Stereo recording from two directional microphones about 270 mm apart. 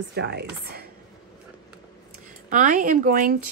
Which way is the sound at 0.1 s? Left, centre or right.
Right.